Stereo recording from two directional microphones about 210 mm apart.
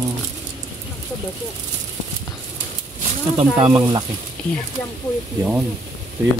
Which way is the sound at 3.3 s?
25° right (ahead or behind).